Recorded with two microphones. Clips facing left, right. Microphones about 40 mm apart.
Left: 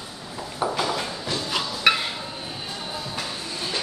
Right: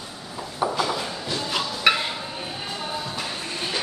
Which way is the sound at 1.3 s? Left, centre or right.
Centre.